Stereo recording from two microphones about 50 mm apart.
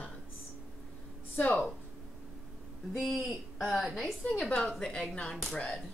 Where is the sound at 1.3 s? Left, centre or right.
Left.